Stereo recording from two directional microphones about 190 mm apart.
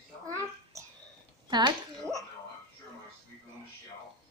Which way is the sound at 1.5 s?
20° right (ahead or behind).